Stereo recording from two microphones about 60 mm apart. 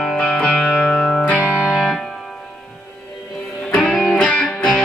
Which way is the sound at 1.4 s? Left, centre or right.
Centre.